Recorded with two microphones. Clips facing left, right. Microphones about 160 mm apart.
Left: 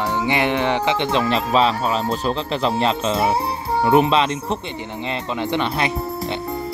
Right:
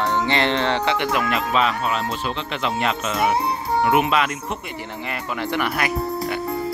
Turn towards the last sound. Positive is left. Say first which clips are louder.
# left 2 dB
turn(degrees=20)  # may be behind; listen again after turning